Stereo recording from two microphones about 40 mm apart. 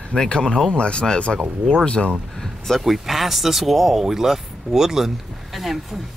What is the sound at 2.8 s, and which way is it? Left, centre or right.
Speech, centre.